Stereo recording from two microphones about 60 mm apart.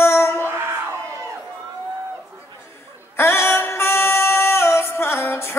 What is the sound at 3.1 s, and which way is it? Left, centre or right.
Music, left.